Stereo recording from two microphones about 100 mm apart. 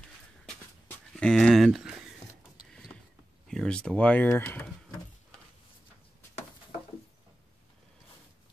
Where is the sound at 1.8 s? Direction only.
5° right (ahead or behind).